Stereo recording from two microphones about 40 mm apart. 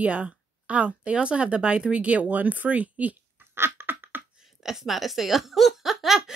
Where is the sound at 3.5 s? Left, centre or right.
Right.